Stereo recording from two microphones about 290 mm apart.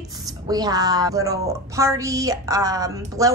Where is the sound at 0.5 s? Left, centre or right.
Centre.